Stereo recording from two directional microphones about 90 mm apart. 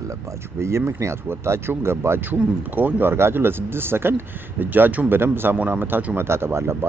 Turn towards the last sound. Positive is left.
turn(degrees=-30)  # may be behind; listen again after turning